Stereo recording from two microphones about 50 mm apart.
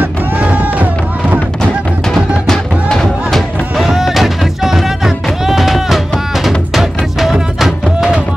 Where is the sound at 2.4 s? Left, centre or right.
Centre.